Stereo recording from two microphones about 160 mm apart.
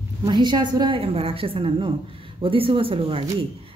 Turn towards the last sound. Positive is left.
turn(degrees=-35)  # may be behind; listen again after turning